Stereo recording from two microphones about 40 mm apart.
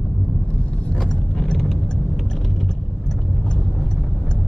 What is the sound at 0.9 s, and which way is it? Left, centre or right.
Vehicle, centre.